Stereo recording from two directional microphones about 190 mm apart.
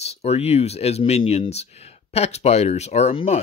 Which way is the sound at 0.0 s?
35° left (ahead or behind).